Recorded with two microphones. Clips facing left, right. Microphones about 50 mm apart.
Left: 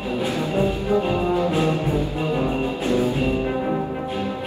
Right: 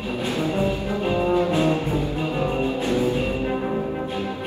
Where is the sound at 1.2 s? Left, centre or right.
Right.